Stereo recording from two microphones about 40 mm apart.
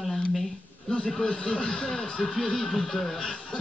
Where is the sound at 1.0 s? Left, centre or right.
Left.